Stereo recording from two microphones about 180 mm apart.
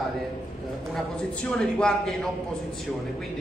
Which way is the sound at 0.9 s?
5° left (ahead or behind).